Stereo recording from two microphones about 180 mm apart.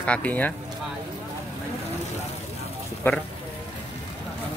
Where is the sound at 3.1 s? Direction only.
10° left (ahead or behind).